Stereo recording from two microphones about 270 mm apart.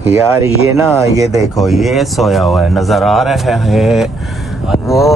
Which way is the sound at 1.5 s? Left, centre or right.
Centre.